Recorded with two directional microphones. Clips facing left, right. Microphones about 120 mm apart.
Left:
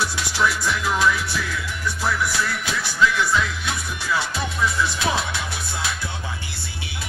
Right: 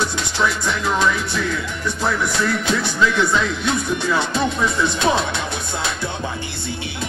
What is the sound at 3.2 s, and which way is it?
Music, 25° right (ahead or behind).